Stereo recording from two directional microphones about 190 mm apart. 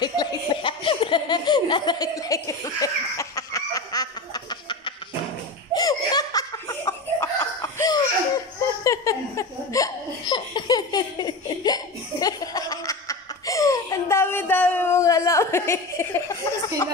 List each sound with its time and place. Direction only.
0.0 s laughter: 25° left (ahead or behind)